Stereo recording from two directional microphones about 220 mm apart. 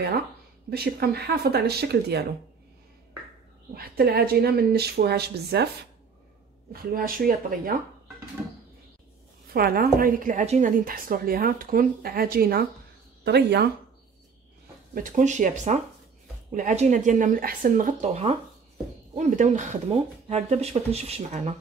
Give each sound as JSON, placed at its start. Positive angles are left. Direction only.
{"t": 0.7, "sound": "a woman's voice", "side_deg": -45}
{"t": 3.7, "sound": "a woman's voice", "side_deg": -45}
{"t": 6.7, "sound": "a woman's voice", "side_deg": -40}
{"t": 9.5, "sound": "a woman's voice", "side_deg": -45}
{"t": 15.0, "sound": "a woman's voice", "side_deg": -35}